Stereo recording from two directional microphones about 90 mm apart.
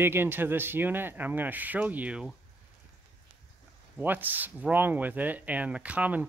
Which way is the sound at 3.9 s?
20° right (ahead or behind).